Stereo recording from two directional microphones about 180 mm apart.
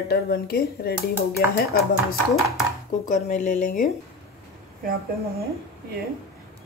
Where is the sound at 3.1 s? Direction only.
45° left (ahead or behind).